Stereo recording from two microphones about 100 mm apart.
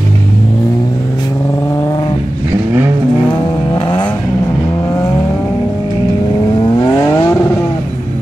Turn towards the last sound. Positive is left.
turn(degrees=30)  # may be behind; listen again after turning